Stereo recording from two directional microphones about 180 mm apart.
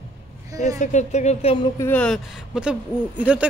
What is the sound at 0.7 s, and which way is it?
Speech, 40° left (ahead or behind).